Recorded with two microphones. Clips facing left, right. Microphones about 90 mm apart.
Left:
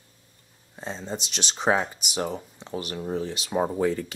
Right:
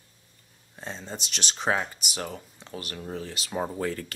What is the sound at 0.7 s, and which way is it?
Speech, 10° left (ahead or behind).